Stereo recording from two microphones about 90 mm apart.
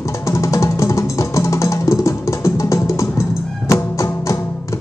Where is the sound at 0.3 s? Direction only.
35° left (ahead or behind).